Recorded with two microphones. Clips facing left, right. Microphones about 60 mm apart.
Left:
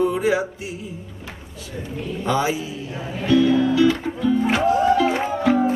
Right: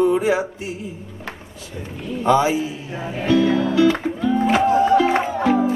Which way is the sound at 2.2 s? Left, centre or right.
Right.